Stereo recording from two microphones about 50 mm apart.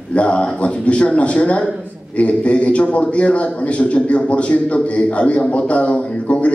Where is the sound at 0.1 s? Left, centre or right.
Left.